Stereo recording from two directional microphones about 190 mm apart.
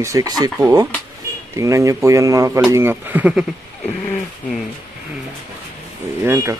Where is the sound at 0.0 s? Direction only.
15° right (ahead or behind).